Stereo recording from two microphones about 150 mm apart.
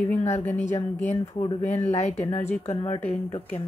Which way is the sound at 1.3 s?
30° left (ahead or behind).